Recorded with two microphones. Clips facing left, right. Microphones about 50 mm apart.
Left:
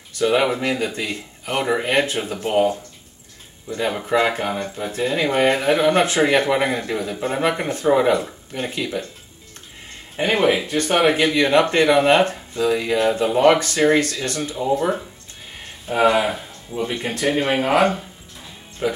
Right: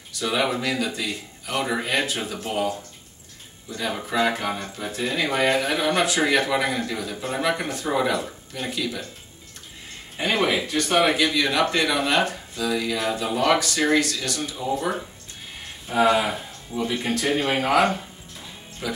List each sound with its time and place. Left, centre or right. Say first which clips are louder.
0.1 s speech: left 6 dB; left
3.7 s speech: left 5 dB; left
10.1 s speech: left 4 dB; left
15.9 s speech: left 3 dB; left
18.8 s speech: left 7 dB; left